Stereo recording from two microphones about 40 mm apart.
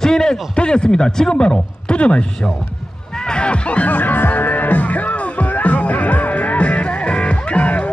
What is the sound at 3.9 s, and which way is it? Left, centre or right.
Music, left.